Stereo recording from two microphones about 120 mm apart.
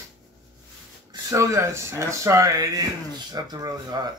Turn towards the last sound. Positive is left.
turn(degrees=-35)  # may be behind; listen again after turning